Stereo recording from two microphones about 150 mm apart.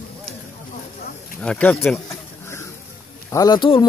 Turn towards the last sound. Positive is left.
turn(degrees=30)  # may be behind; listen again after turning